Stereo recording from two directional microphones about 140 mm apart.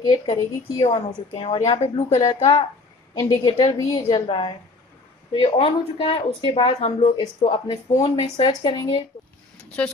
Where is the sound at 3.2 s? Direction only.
35° left (ahead or behind).